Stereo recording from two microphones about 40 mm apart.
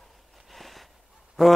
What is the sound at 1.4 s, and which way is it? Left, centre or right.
Speech, centre.